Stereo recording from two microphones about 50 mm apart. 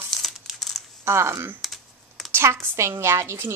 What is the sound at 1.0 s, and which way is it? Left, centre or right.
Speech, right.